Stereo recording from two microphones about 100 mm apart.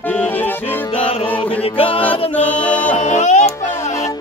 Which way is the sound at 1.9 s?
15° left (ahead or behind).